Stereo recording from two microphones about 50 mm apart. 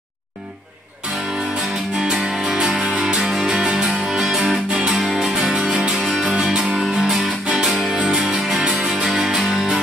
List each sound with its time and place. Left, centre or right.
2.0 s music: centre